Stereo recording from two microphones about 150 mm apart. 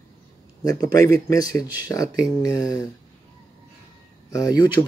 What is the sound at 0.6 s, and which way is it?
Speech, 20° left (ahead or behind).